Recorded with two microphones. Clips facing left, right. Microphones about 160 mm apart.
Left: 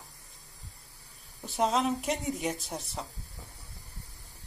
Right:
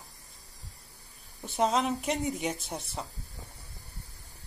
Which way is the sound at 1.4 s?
Centre (ahead or behind).